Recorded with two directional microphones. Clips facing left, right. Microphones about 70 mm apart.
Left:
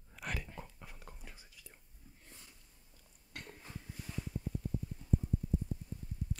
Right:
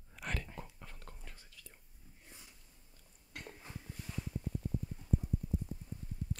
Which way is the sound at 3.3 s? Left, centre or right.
Centre.